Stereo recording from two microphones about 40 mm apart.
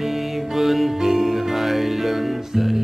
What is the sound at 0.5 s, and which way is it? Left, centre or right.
Music, centre.